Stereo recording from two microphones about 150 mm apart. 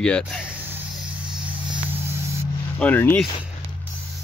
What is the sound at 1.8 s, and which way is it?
Spray, 15° right (ahead or behind).